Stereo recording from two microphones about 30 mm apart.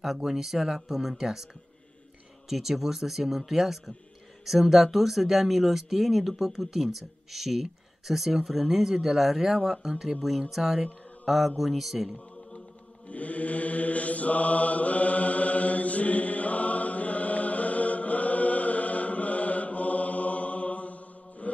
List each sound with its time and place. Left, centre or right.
0.0 s speech: centre
2.5 s speech: centre
13.1 s mantra: left